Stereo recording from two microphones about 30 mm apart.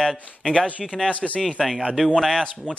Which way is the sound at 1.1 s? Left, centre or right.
Left.